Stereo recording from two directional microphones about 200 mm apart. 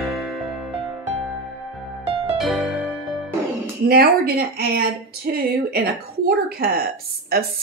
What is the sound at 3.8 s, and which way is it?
Speech, 50° right (ahead or behind).